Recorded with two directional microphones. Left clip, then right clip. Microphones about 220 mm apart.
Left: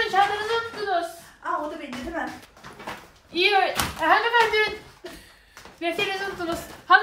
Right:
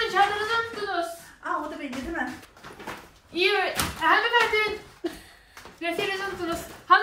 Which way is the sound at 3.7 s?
Centre (ahead or behind).